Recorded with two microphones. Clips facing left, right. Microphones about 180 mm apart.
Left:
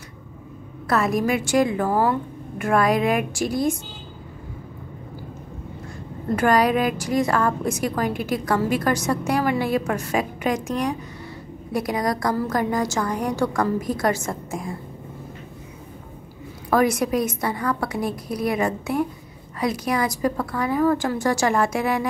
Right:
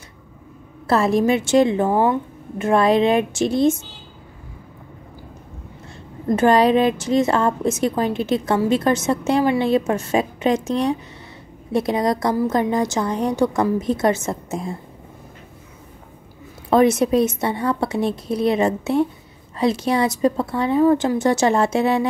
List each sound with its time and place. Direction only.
0.8 s a woman's voice: 30° right (ahead or behind)
6.3 s a woman's voice: 25° right (ahead or behind)
16.7 s a woman's voice: 25° right (ahead or behind)